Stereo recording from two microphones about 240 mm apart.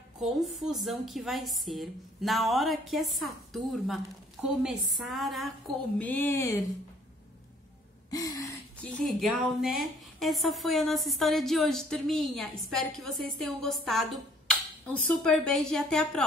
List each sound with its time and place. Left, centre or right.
0.2 s a woman's voice: centre
8.1 s speech: centre
9.2 s a woman's voice: centre